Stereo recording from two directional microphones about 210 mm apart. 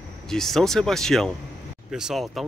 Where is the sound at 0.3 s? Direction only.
Centre (ahead or behind).